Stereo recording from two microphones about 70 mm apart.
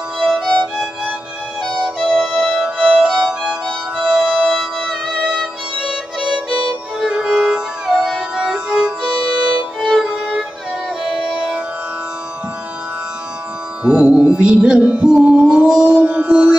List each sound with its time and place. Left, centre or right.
0.2 s music: centre
1.7 s music: centre
9.8 s music: centre
11.1 s music: centre
13.8 s music: centre